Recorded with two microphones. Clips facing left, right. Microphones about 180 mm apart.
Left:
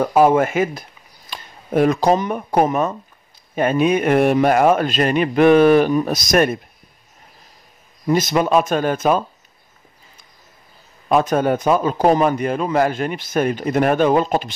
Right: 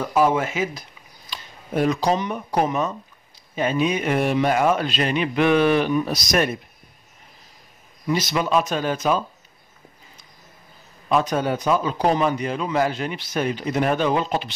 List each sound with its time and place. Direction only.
0.0 s a man's voice: 50° left (ahead or behind)
8.1 s a man's voice: 50° left (ahead or behind)
11.1 s a man's voice: 50° left (ahead or behind)